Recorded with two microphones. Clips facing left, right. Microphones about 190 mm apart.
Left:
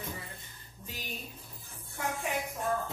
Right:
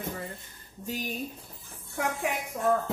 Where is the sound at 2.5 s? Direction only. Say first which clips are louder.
Right 7 dB; 60° right (ahead or behind).